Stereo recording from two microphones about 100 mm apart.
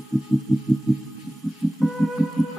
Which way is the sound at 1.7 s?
Centre (ahead or behind).